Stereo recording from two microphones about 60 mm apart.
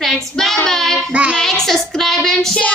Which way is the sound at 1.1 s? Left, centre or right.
Right.